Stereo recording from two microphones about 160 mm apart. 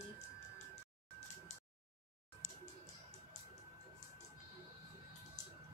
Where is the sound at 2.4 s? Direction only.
50° left (ahead or behind).